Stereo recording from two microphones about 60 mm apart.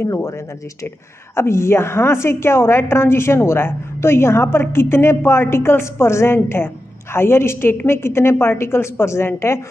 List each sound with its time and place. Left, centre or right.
1.3 s a woman's voice: left